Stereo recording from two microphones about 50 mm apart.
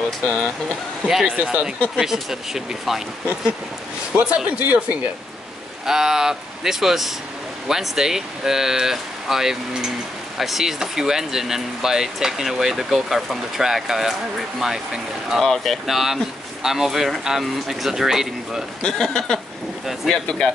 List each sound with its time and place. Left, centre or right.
1.2 s speech: right
2.0 s speech: centre
4.1 s speech: centre
4.5 s speech: right
5.9 s speech: centre
15.4 s speech: centre
18.8 s speech: centre